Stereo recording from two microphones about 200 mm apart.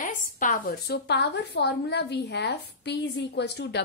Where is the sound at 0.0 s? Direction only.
40° left (ahead or behind).